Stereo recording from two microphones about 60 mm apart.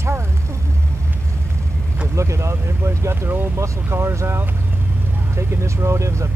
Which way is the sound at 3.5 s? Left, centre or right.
Right.